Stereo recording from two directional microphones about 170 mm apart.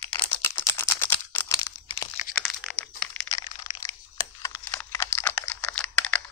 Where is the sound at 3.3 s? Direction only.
20° left (ahead or behind).